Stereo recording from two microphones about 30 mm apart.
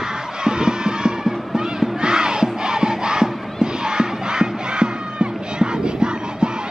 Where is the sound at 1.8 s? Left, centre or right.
Right.